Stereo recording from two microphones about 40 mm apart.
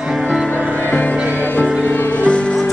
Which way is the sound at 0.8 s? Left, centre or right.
Left.